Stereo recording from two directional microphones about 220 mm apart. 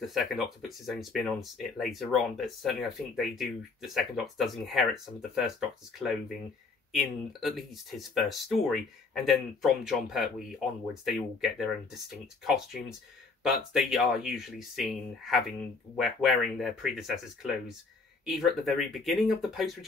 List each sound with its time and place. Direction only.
0.0 s speech: centre (ahead or behind)